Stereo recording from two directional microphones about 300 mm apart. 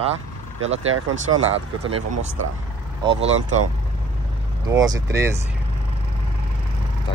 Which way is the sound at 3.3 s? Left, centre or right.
Right.